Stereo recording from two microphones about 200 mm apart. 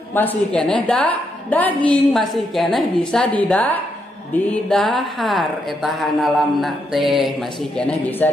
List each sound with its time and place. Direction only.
0.1 s a woman's voice: 10° left (ahead or behind)